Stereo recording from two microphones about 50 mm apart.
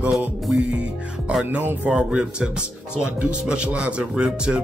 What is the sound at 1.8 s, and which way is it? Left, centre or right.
Speech, centre.